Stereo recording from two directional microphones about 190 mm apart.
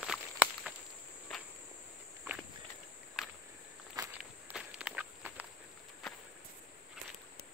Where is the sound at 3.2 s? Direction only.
5° right (ahead or behind).